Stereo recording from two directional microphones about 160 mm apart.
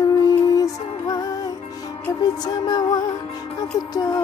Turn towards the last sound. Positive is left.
turn(degrees=25)  # may be behind; listen again after turning